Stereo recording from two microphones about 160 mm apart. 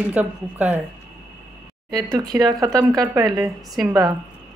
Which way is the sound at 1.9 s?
25° right (ahead or behind).